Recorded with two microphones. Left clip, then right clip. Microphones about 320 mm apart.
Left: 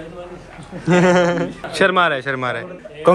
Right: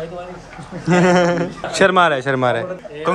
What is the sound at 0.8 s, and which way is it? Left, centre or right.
A man's voice, centre.